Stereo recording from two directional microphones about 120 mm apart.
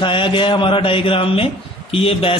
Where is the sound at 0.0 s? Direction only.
45° left (ahead or behind).